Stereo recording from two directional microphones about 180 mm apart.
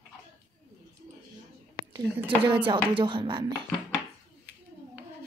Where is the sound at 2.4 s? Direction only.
30° right (ahead or behind).